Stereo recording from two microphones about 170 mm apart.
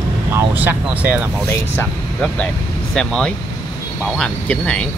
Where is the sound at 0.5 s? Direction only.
10° right (ahead or behind).